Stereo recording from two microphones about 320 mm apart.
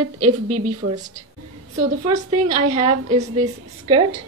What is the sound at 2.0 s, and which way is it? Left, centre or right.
Speech, right.